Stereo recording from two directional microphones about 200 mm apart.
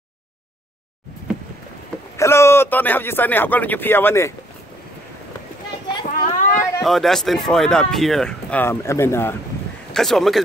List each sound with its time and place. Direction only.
2.1 s speech: 15° left (ahead or behind)
6.0 s children playing: 40° left (ahead or behind)
6.8 s speech: centre (ahead or behind)
9.9 s speech: centre (ahead or behind)